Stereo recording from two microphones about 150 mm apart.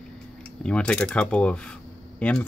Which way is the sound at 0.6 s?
5° left (ahead or behind).